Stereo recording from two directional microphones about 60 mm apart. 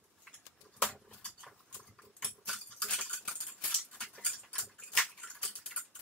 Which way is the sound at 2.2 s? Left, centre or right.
Centre.